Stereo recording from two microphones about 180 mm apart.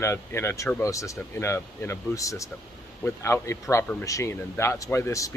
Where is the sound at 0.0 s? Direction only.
15° left (ahead or behind).